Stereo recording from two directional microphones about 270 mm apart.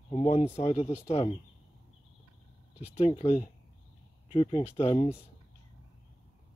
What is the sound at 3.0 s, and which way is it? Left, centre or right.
Speech, left.